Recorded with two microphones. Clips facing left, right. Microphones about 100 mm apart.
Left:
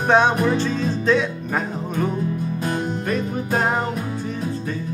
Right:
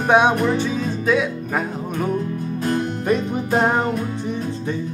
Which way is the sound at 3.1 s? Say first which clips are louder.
Right 5 dB; 20° right (ahead or behind).